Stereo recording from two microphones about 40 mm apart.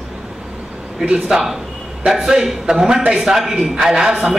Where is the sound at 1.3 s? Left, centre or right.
Centre.